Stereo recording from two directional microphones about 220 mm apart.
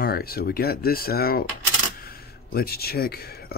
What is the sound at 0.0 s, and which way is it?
Speech, 45° left (ahead or behind).